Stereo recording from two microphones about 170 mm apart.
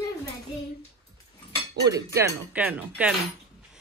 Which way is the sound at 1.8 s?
20° right (ahead or behind).